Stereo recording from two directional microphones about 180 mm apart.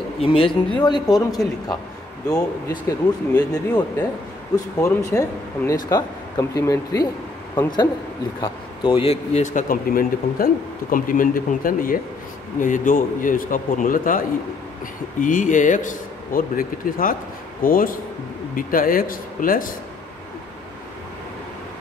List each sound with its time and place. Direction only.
0.2 s speech: 30° left (ahead or behind); by 19.7 s 50° left (ahead or behind)